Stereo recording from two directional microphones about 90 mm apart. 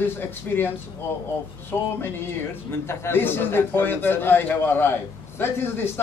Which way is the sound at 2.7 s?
25° left (ahead or behind).